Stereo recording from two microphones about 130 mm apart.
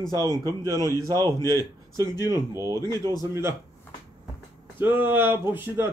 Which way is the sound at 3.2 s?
20° right (ahead or behind).